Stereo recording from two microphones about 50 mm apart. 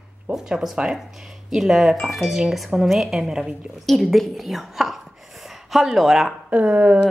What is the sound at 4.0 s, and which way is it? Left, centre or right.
A woman's voice, centre.